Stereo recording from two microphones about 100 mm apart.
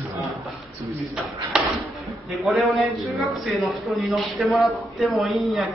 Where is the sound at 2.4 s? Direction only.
Centre (ahead or behind).